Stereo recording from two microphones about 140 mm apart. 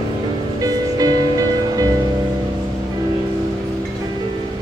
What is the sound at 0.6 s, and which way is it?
Music, 25° right (ahead or behind).